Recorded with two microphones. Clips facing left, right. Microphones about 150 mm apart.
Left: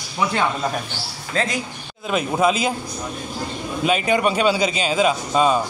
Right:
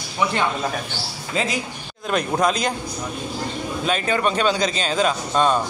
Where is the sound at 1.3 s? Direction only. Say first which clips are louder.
Left 1 dB; 5° right (ahead or behind).